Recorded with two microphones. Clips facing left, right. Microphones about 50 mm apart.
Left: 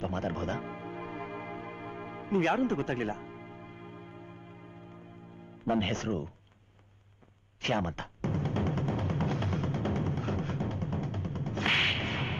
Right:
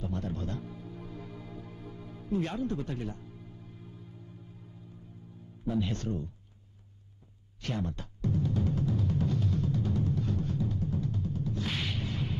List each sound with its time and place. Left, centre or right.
0.0 s music: left
5.7 s speech: left
7.6 s music: left